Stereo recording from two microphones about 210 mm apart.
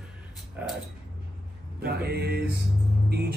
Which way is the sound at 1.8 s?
50° right (ahead or behind).